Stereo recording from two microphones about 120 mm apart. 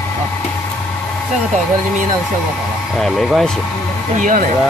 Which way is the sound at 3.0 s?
Centre (ahead or behind).